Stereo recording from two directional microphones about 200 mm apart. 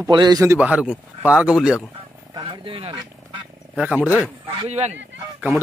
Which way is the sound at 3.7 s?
5° right (ahead or behind).